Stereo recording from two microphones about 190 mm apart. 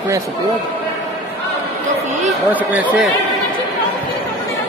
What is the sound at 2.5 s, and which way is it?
Speech, 10° right (ahead or behind).